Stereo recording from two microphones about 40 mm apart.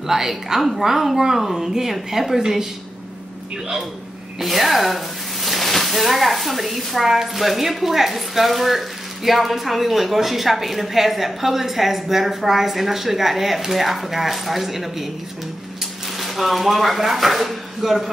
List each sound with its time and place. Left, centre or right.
0.0 s speech: centre
4.4 s speech: centre
16.2 s speech: centre